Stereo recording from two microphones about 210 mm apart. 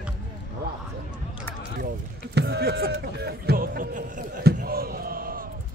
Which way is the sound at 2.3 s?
50° right (ahead or behind).